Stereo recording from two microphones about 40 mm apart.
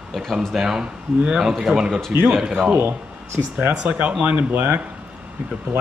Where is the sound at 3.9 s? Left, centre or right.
Right.